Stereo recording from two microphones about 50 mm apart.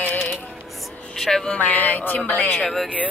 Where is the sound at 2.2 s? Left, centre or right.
Left.